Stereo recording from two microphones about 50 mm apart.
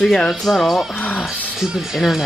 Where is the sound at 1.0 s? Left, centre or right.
Left.